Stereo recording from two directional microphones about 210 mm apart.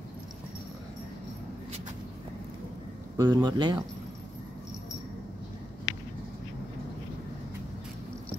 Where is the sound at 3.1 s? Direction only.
20° right (ahead or behind).